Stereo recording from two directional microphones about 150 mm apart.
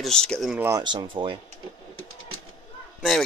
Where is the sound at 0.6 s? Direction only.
25° right (ahead or behind).